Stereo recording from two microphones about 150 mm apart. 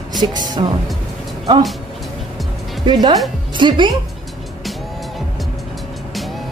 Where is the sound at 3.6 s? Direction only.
30° right (ahead or behind).